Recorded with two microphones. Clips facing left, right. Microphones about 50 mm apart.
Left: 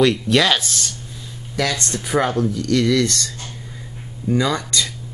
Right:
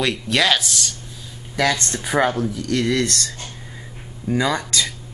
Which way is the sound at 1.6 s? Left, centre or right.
Right.